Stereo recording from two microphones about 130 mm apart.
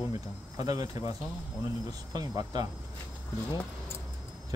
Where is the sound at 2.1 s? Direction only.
30° right (ahead or behind).